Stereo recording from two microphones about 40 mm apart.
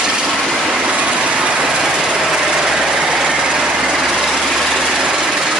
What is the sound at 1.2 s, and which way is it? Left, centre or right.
Vehicle, right.